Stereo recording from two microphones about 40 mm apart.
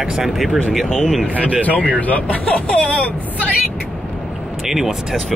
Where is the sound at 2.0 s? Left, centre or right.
Left.